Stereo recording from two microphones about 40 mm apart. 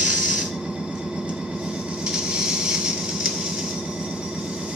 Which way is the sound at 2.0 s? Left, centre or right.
Right.